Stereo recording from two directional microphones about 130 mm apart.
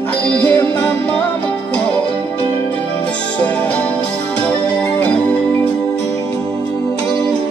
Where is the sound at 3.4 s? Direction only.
15° left (ahead or behind).